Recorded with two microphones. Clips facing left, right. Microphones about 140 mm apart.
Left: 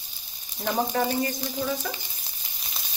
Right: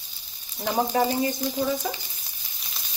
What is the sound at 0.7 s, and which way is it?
Speech, 15° right (ahead or behind).